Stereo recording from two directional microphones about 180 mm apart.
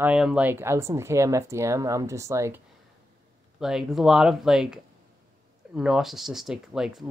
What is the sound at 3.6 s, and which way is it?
Speech, centre (ahead or behind).